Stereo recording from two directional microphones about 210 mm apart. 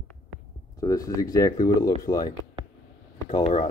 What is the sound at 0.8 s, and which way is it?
Speech, 15° left (ahead or behind).